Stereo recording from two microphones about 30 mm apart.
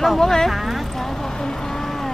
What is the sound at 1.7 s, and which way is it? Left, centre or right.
Vehicle, centre.